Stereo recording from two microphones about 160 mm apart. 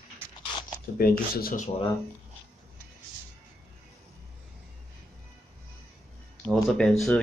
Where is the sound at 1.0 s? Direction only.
65° left (ahead or behind).